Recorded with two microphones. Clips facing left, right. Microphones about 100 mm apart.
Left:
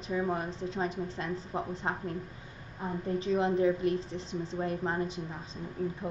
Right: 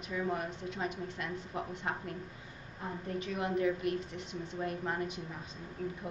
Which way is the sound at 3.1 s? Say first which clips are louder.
Left 6 dB; 30° left (ahead or behind).